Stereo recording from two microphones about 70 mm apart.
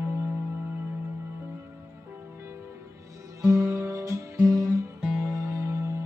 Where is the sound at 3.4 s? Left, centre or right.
Right.